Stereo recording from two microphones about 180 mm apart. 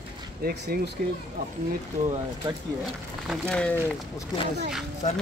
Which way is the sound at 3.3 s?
5° left (ahead or behind).